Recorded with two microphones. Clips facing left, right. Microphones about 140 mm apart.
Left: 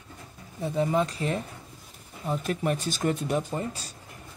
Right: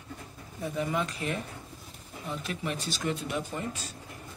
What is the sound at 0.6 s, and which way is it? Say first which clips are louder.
Speech: left 5 dB; 30° left (ahead or behind).